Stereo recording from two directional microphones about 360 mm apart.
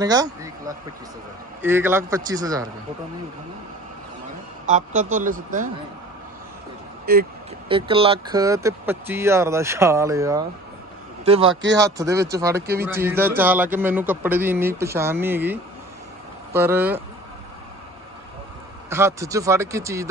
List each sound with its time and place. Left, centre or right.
0.0 s speech: centre
4.6 s a man's voice: centre
7.1 s a man's voice: right; by 10.4 s centre
11.4 s speech: right
11.8 s a man's voice: centre
18.9 s speech: centre